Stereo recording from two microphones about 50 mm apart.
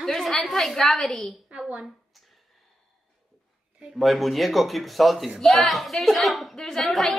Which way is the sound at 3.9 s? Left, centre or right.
Centre.